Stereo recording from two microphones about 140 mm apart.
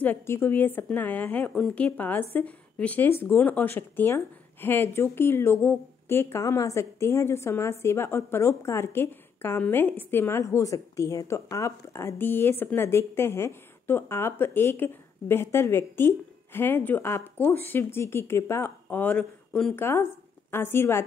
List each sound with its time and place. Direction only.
0.0 s speech: 15° left (ahead or behind)
1.5 s a woman's voice: centre (ahead or behind)
1.9 s speech: 15° left (ahead or behind)